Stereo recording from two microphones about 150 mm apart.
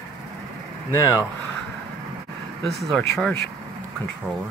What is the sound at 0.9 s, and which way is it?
Speech, 20° left (ahead or behind).